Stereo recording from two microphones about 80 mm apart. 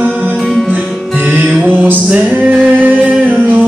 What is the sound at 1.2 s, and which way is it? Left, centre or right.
Music, right.